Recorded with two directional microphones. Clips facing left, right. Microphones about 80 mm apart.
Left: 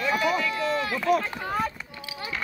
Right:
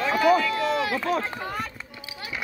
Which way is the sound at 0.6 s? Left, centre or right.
Right.